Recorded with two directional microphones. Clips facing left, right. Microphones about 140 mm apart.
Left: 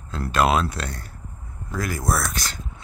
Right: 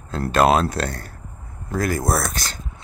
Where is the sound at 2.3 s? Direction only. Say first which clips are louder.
Even; 35° right (ahead or behind).